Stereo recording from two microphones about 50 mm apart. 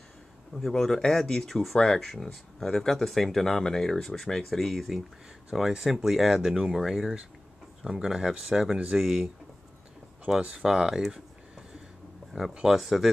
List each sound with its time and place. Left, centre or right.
0.6 s speech: centre
1.2 s speech: centre
1.5 s speech: centre
10.4 s speech: centre
12.7 s speech: centre